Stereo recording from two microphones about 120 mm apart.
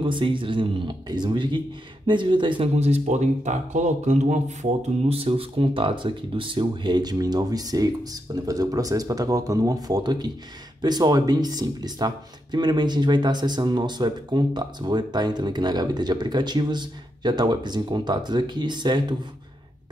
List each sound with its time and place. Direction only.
0.0 s speech: 45° right (ahead or behind)
2.8 s speech: 70° right (ahead or behind); by 19.1 s 40° right (ahead or behind)